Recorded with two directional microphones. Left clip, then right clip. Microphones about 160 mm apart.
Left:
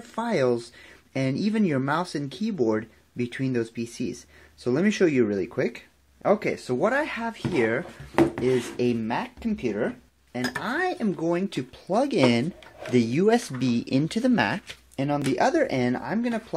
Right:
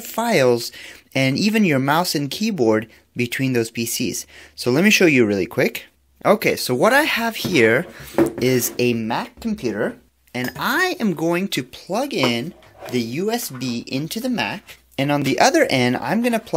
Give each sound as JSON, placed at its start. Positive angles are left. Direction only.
{"t": 0.0, "sound": "speech", "side_deg": -20}
{"t": 8.7, "sound": "speech", "side_deg": -25}
{"t": 10.3, "sound": "speech", "side_deg": -35}
{"t": 11.1, "sound": "speech", "side_deg": -15}
{"t": 11.9, "sound": "speech", "side_deg": 15}
{"t": 15.0, "sound": "speech", "side_deg": -20}